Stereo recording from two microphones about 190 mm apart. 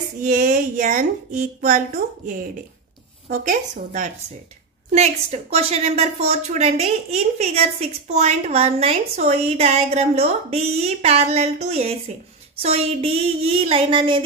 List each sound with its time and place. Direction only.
0.2 s a woman's voice: 40° right (ahead or behind)
3.3 s a woman's voice: 40° right (ahead or behind); by 14.2 s 25° right (ahead or behind)